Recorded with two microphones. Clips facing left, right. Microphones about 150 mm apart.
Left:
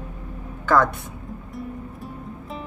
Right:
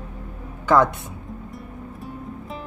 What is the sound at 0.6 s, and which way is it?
Speech, 20° right (ahead or behind).